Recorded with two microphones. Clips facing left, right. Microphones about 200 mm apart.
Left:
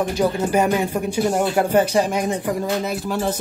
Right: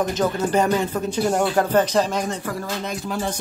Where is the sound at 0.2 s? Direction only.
10° left (ahead or behind).